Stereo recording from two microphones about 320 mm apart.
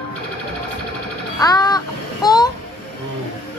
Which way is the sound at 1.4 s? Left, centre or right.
Centre.